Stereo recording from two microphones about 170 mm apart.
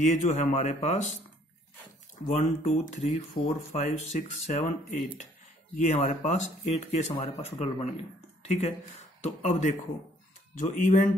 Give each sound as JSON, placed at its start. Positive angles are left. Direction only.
{"t": 0.0, "sound": "speech", "side_deg": 45}
{"t": 2.2, "sound": "speech", "side_deg": 40}
{"t": 5.8, "sound": "speech", "side_deg": 45}